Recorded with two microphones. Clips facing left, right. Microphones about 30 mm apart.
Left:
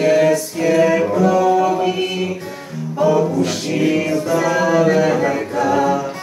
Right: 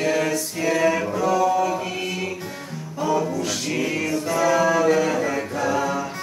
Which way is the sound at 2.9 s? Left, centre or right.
Centre.